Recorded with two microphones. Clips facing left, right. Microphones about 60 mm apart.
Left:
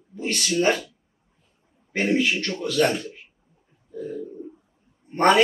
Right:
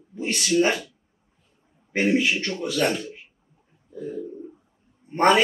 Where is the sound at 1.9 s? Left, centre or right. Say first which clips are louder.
Right 1 dB; centre.